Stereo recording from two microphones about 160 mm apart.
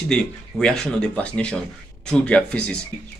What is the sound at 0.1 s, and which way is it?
Speech, 5° left (ahead or behind).